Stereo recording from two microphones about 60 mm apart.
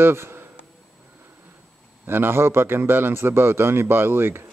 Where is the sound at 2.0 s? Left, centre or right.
Right.